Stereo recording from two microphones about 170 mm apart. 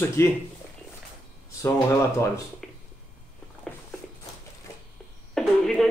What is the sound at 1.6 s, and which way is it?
Speech, 15° left (ahead or behind).